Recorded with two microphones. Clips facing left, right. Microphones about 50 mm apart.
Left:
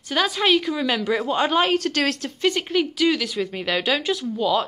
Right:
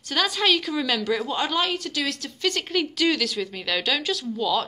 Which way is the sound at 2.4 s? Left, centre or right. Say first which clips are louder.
Left 4 dB; centre.